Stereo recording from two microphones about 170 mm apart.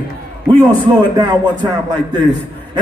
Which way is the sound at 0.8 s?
25° right (ahead or behind).